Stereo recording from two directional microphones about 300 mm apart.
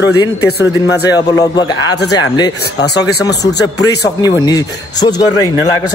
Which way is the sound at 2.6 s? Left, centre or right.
Left.